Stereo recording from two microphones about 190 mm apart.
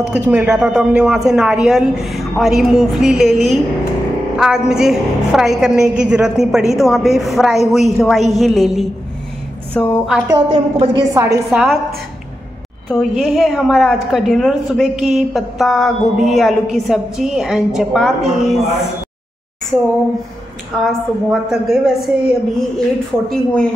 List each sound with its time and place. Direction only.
0.0 s a woman's voice: 5° right (ahead or behind)
10.2 s a woman's voice: 25° right (ahead or behind)
11.5 s a woman's voice: centre (ahead or behind)
12.8 s a woman's voice: centre (ahead or behind)
20.8 s a woman's voice: centre (ahead or behind)